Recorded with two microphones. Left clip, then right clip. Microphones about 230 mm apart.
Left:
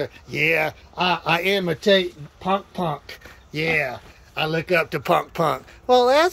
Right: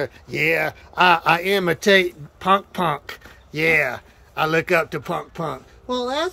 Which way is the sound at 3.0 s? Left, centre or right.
Centre.